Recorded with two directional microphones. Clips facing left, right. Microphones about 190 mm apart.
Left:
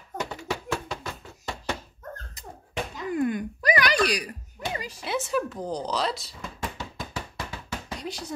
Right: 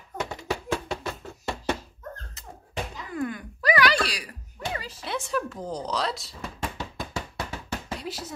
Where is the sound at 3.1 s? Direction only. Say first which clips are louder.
Left 4 dB; 20° left (ahead or behind).